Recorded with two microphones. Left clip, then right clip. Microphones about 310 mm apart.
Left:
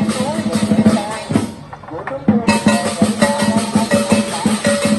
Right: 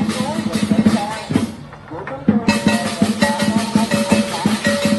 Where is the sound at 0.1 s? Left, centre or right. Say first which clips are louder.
Left 3 dB; centre.